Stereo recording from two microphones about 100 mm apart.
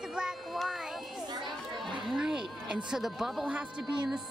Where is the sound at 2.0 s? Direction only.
5° right (ahead or behind).